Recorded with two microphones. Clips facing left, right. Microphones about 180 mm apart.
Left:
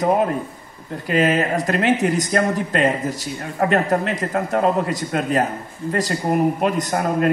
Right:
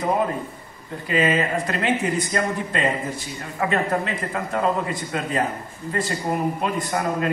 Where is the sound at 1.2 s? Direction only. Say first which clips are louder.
Left 3 dB; 45° left (ahead or behind).